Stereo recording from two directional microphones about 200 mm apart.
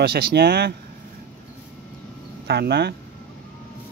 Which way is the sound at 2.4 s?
55° right (ahead or behind).